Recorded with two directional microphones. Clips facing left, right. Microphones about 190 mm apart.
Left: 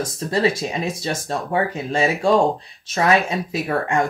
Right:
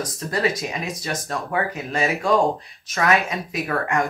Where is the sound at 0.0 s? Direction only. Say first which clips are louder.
Left 3 dB; 30° left (ahead or behind).